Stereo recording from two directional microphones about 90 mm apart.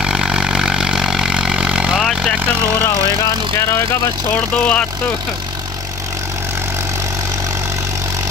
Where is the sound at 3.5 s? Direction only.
30° left (ahead or behind).